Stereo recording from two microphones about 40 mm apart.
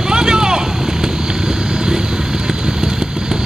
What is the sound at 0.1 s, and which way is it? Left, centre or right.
Vehicle, centre.